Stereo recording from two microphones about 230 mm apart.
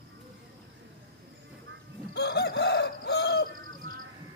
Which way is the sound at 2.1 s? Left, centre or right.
Left.